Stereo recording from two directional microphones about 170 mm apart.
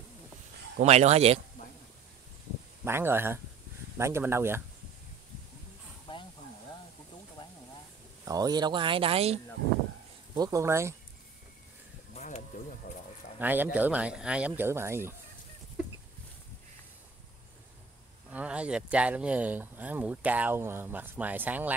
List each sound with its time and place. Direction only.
0.7 s speech: 40° right (ahead or behind)
2.8 s speech: 15° right (ahead or behind)
6.1 s a sound: 30° left (ahead or behind)
7.4 s a sound: 25° left (ahead or behind)
8.3 s speech: 20° right (ahead or behind)
10.3 s speech: 20° right (ahead or behind)
12.2 s a sound: 45° left (ahead or behind)
13.4 s speech: 10° right (ahead or behind)
18.3 s speech: 10° right (ahead or behind)